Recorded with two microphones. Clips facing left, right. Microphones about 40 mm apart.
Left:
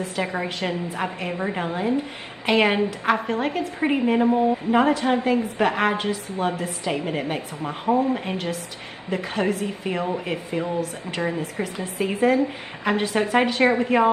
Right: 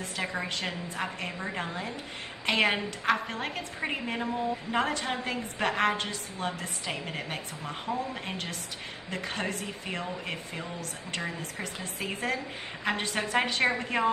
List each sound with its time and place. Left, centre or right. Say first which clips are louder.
0.3 s a woman's voice: left 7 dB; centre
4.3 s speech: left 11 dB; left
4.7 s a woman's voice: left 9 dB; centre
7.8 s speech: left 13 dB; left
8.3 s a woman's voice: left 8 dB; centre
11.1 s speech: left 9 dB; left
11.6 s a woman's voice: left 9 dB; centre